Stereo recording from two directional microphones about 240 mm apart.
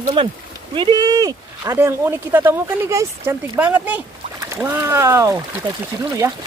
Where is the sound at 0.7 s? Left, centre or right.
Centre.